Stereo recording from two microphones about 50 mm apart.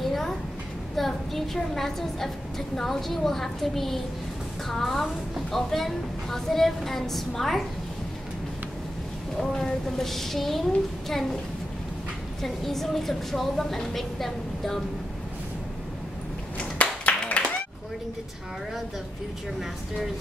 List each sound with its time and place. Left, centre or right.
0.0 s a sound: centre
0.9 s a woman's voice: centre
9.4 s a woman's voice: centre
12.4 s a woman's voice: centre
16.5 s clapping: left